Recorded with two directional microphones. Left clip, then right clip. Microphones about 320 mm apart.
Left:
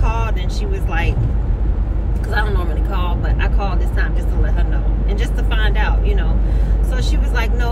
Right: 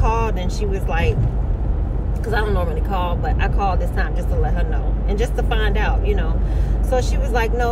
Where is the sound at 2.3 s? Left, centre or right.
Centre.